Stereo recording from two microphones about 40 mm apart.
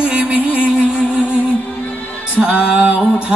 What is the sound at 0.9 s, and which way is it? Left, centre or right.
Music, right.